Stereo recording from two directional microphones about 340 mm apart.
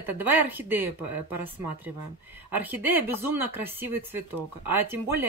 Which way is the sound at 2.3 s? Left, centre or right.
Centre.